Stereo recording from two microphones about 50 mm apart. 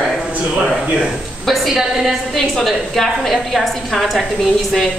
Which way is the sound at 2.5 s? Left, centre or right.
Centre.